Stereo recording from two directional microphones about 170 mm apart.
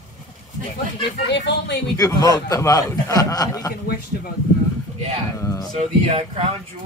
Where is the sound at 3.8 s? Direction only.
60° left (ahead or behind).